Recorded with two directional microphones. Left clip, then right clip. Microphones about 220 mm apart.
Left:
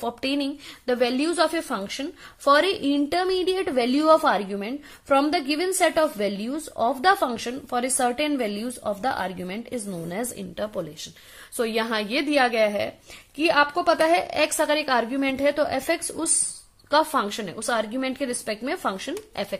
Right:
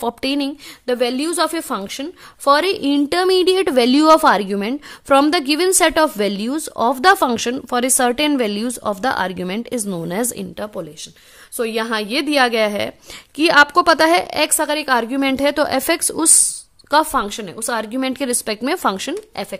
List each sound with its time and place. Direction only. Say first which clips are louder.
0.0 s a woman's voice: right 6 dB; 30° right (ahead or behind)
16.9 s a woman's voice: right 5 dB; 25° right (ahead or behind)
19.4 s speech: right 3 dB; 25° right (ahead or behind)